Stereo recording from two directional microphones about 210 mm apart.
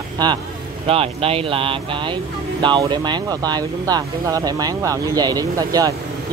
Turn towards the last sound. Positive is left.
turn(degrees=-15)  # may be behind; listen again after turning